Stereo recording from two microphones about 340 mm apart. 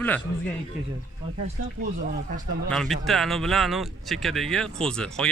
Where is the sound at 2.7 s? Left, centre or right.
Centre.